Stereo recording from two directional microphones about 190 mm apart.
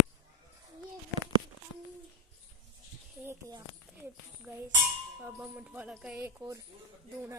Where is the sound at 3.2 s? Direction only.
15° right (ahead or behind).